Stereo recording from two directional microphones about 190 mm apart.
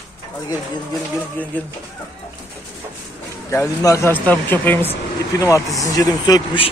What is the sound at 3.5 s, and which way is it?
Speech, 15° left (ahead or behind).